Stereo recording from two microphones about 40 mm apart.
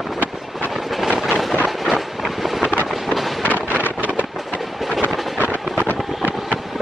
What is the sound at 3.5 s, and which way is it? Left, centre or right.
Wind noise, left.